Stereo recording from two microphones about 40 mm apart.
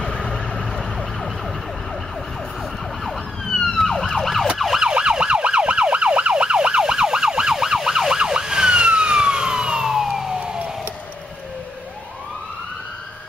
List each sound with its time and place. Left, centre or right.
0.0 s vehicle: centre
0.9 s emergency vehicle: centre
3.5 s emergency vehicle: centre
5.1 s emergency vehicle: right; by 10.2 s centre